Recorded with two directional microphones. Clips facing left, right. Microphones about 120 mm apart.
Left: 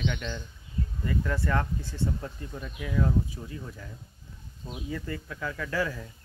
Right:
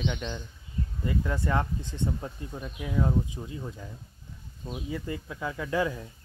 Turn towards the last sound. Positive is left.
turn(degrees=-20)  # may be behind; listen again after turning